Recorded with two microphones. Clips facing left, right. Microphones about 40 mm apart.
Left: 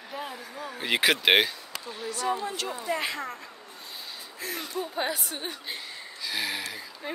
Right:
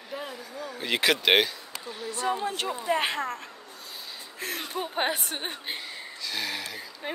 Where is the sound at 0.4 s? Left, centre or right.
Centre.